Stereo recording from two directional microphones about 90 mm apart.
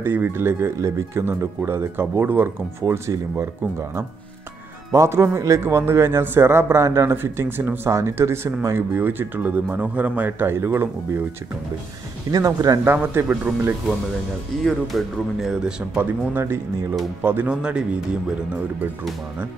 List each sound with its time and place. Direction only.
0.0 s a man's voice: 25° right (ahead or behind)
2.8 s speech: 40° right (ahead or behind)
4.9 s a man's voice: 35° right (ahead or behind); by 10.5 s 15° right (ahead or behind)
10.5 s a man's voice: 30° right (ahead or behind)
12.3 s speech: 40° right (ahead or behind)
12.8 s a man's voice: 25° right (ahead or behind)
14.6 s speech: centre (ahead or behind)
16.0 s a man's voice: 25° right (ahead or behind)
17.6 s speech: 10° right (ahead or behind)